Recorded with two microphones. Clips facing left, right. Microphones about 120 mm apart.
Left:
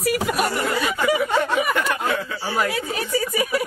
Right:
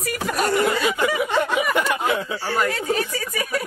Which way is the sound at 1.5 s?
15° right (ahead or behind).